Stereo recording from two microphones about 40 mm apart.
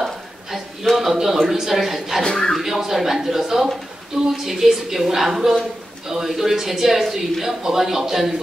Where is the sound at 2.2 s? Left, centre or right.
Centre.